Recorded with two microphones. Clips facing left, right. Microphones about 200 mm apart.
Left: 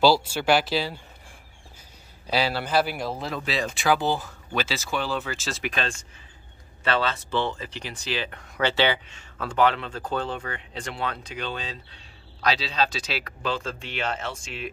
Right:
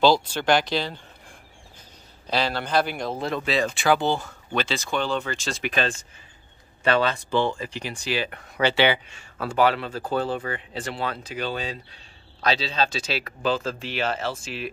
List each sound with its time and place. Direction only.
0.0 s speech: 10° left (ahead or behind)
2.2 s speech: 10° left (ahead or behind)
6.8 s speech: 15° right (ahead or behind)